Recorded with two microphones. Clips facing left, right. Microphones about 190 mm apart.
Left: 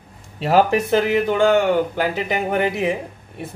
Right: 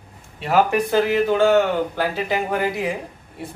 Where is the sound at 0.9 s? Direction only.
20° left (ahead or behind).